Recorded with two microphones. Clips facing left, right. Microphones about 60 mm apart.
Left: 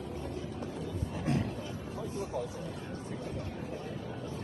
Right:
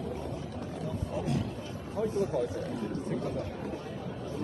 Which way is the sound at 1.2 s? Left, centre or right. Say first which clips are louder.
Left 1 dB; left.